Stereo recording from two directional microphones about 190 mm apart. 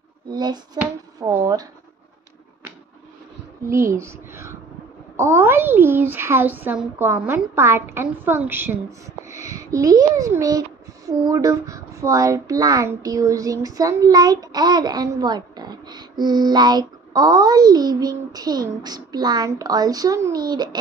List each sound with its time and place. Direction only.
0.3 s a child's voice: 20° right (ahead or behind)
3.6 s a woman's voice: 15° right (ahead or behind)